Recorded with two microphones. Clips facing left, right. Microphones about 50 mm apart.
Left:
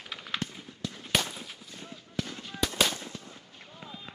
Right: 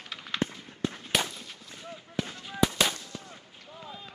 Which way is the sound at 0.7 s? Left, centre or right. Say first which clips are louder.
Right 6 dB; right.